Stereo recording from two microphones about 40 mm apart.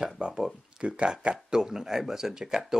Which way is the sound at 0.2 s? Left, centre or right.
Right.